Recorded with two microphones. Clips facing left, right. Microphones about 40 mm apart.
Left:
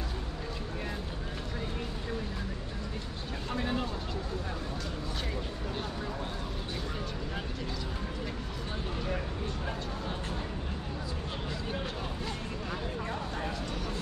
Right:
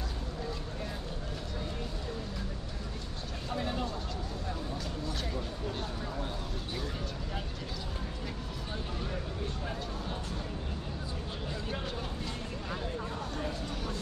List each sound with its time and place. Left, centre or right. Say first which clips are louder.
3.5 s vehicle: left 2 dB; centre